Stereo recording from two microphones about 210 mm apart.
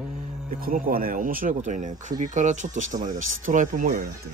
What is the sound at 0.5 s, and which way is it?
Speech, 40° right (ahead or behind).